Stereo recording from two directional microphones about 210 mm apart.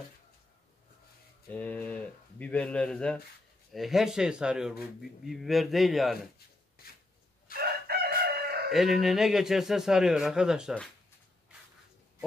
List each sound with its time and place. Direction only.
1.5 s a man's voice: 5° left (ahead or behind)
6.8 s a sound: 45° left (ahead or behind)
7.5 s chicken: 45° right (ahead or behind)
8.7 s a man's voice: centre (ahead or behind)